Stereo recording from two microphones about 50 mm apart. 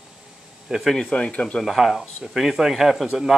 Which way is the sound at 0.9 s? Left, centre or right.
Centre.